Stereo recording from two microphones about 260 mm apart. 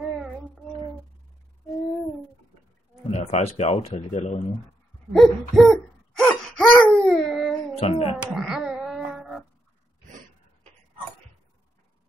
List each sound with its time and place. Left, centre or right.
3.0 s speech: left
5.1 s a sound: centre
6.9 s dog: centre
7.8 s speech: left
8.2 s wail: centre